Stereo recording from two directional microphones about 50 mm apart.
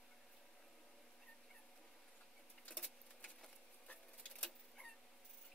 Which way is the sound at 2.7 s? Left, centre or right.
Centre.